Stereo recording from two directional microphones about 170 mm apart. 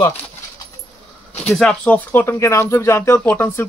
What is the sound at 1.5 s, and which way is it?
Speech, 5° left (ahead or behind).